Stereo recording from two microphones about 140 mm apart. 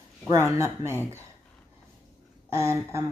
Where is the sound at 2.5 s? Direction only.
20° right (ahead or behind).